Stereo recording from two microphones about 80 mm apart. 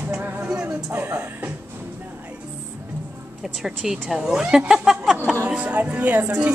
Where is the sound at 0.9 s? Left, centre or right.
Right.